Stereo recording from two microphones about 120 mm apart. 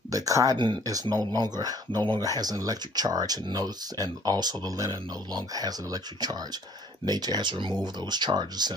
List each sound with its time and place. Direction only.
0.1 s speech: 30° right (ahead or behind)